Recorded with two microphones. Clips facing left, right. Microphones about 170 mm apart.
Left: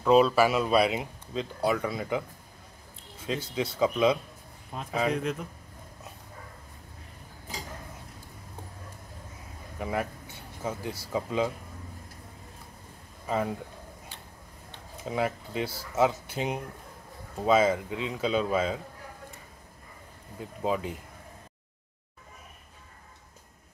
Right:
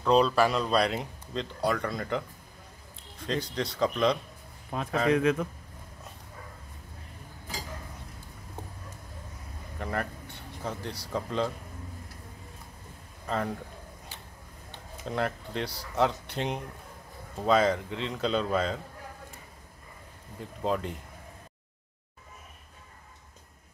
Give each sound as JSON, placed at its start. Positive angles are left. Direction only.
{"t": 0.0, "sound": "speech", "side_deg": 5}
{"t": 4.7, "sound": "a man's voice", "side_deg": -70}
{"t": 5.1, "sound": "a man's voice", "side_deg": -90}
{"t": 9.8, "sound": "speech", "side_deg": 5}
{"t": 13.3, "sound": "speech", "side_deg": 5}
{"t": 15.0, "sound": "speech", "side_deg": 5}
{"t": 20.3, "sound": "speech", "side_deg": 5}